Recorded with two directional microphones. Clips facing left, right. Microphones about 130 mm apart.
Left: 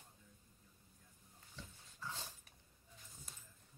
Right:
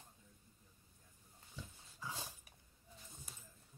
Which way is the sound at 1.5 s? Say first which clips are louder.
Right 2 dB; 10° right (ahead or behind).